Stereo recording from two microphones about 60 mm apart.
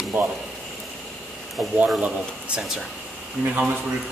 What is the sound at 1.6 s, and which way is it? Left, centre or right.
Speech, centre.